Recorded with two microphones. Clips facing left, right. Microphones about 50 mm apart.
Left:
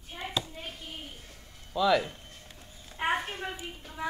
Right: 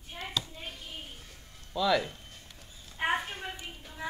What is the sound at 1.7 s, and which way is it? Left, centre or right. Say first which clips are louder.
Speech: left 2 dB; centre.